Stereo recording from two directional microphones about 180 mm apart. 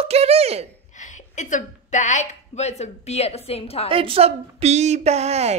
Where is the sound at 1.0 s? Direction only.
40° left (ahead or behind).